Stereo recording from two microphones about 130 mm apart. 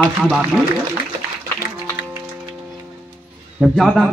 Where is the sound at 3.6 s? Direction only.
Centre (ahead or behind).